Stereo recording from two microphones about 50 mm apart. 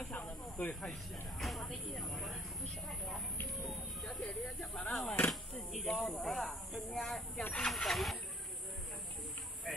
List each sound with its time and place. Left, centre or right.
0.1 s snake: left
1.4 s speech: centre
3.6 s speech: centre
5.7 s speech: centre